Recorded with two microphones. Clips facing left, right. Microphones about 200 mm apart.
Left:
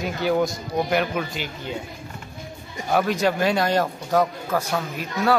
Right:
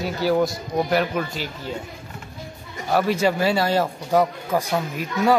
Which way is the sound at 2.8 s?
5° right (ahead or behind).